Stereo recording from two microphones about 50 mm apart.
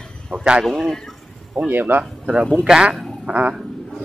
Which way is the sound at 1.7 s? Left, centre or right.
Right.